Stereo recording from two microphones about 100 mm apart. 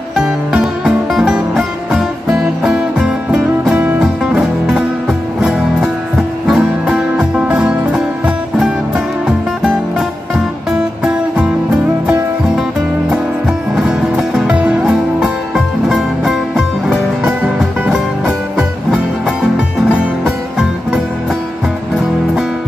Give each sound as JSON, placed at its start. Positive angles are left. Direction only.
{"t": 0.1, "sound": "music", "side_deg": -5}
{"t": 6.4, "sound": "music", "side_deg": -5}
{"t": 10.7, "sound": "music", "side_deg": -5}
{"t": 13.7, "sound": "music", "side_deg": -10}